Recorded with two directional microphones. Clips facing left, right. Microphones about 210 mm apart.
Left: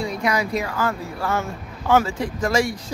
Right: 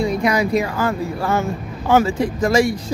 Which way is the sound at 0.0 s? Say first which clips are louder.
Right 5 dB; 15° right (ahead or behind).